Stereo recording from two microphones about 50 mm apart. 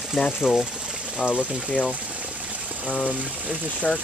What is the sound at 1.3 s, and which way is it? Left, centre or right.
Speech, left.